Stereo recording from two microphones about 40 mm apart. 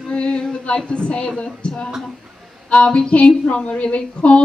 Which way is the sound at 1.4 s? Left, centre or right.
Left.